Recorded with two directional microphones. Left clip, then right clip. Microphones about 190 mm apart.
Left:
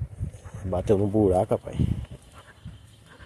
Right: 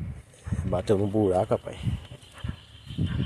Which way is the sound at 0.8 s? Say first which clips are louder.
Left 3 dB; 15° left (ahead or behind).